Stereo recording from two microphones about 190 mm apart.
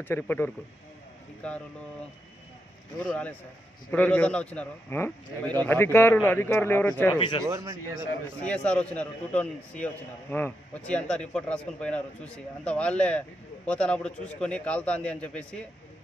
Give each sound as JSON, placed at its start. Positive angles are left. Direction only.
{"t": 0.0, "sound": "a man's voice", "side_deg": 10}
{"t": 3.0, "sound": "a man's voice", "side_deg": 5}
{"t": 7.2, "sound": "speech", "side_deg": 25}
{"t": 7.4, "sound": "a man's voice", "side_deg": -15}
{"t": 8.5, "sound": "a man's voice", "side_deg": 5}